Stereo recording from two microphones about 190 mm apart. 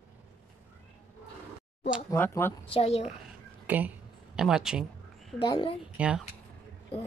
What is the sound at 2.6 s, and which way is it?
Speech, 30° left (ahead or behind).